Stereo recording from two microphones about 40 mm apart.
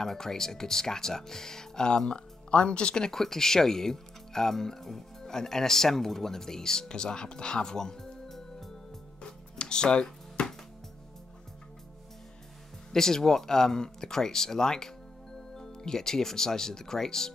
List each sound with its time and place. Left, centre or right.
0.0 s speech: centre
3.1 s speech: centre
9.2 s music: left
12.9 s speech: centre